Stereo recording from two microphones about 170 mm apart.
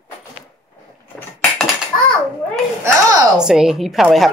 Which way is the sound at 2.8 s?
20° right (ahead or behind).